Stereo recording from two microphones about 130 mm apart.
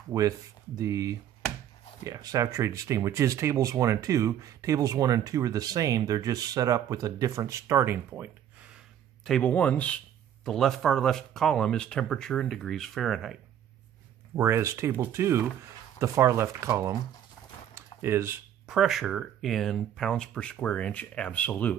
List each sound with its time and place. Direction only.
0.1 s speech: 25° right (ahead or behind)
8.1 s gasp: 10° right (ahead or behind)
9.2 s speech: 5° left (ahead or behind)
14.3 s speech: 20° right (ahead or behind)
17.7 s a sound: 20° right (ahead or behind)
18.7 s speech: 5° right (ahead or behind)